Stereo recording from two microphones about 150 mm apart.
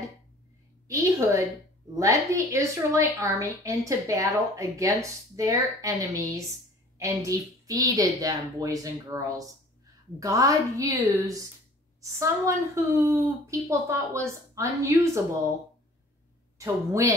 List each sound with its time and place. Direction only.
0.8 s a woman's voice: 20° right (ahead or behind)
16.5 s a woman's voice: 20° right (ahead or behind)